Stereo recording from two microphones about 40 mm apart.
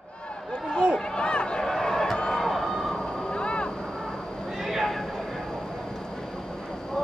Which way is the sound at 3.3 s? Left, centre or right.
Left.